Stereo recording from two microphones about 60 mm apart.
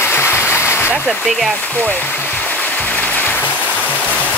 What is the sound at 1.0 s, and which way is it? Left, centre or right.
Speech, centre.